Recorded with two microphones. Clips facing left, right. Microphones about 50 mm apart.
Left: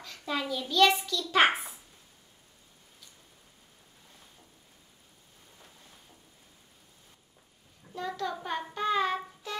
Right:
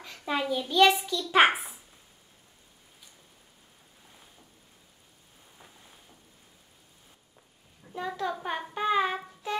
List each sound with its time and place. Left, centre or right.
0.0 s a child's voice: centre
5.6 s rain: centre
7.9 s a sound: centre